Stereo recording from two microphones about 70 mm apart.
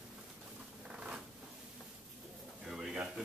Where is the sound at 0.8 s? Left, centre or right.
Centre.